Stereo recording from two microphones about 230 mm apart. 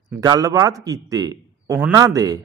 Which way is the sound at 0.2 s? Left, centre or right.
Centre.